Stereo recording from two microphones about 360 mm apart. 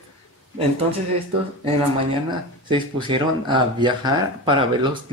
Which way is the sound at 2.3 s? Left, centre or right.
Centre.